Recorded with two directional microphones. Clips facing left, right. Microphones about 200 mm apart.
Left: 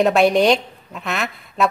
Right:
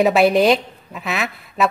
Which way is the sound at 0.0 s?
Centre (ahead or behind).